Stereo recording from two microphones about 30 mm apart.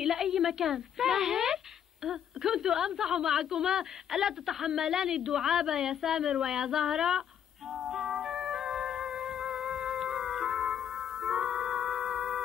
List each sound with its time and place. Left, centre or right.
0.0 s a sound: centre
2.0 s a woman's voice: centre
7.7 s music: centre